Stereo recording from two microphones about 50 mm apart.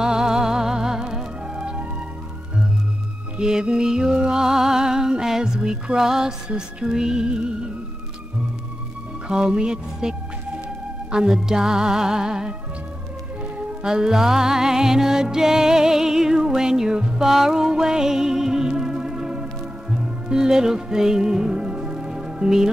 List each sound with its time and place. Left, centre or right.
0.0 s music: centre
3.3 s music: centre
9.3 s music: centre
13.8 s music: centre
17.2 s music: centre